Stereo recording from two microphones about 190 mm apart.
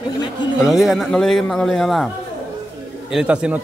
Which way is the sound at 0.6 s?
Centre (ahead or behind).